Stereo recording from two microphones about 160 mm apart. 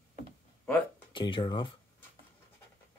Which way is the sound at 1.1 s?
30° left (ahead or behind).